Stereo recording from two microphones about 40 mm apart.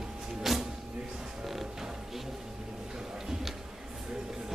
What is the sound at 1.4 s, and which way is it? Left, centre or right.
Music, centre.